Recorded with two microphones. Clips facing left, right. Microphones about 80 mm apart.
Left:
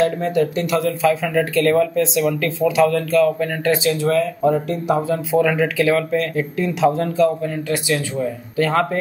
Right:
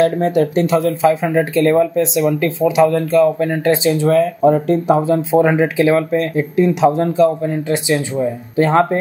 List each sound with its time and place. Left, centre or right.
0.4 s speech: right
0.8 s speech: right